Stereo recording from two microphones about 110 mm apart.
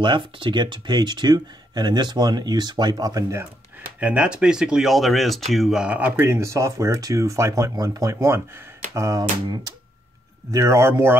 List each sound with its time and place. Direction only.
0.0 s speech: 45° right (ahead or behind); by 3.4 s 30° right (ahead or behind)
4.0 s speech: 10° right (ahead or behind); by 9.2 s 30° right (ahead or behind)
10.5 s speech: 25° right (ahead or behind)